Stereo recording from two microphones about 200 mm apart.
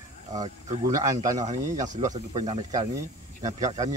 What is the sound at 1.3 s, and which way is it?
Speech, 35° right (ahead or behind).